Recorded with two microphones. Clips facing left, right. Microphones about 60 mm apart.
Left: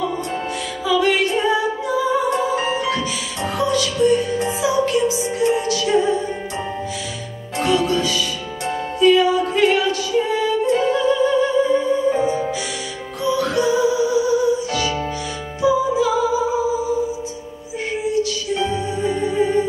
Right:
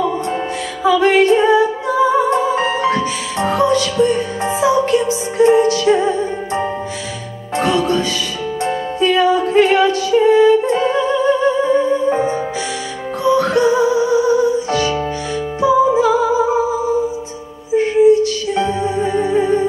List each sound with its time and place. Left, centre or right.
0.8 s music: right
17.7 s music: right